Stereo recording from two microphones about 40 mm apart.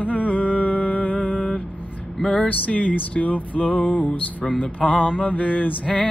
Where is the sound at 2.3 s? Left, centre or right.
Left.